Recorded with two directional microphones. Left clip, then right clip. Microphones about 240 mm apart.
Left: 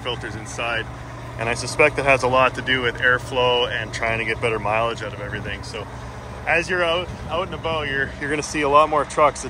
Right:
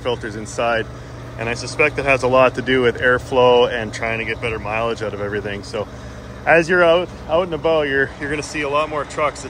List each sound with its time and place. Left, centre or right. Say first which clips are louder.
0.0 s speech: right 5 dB; right
1.4 s speech: even; centre
4.1 s speech: left 2 dB; centre
4.9 s speech: right 6 dB; right
6.4 s speech: right 7 dB; right
8.2 s speech: even; centre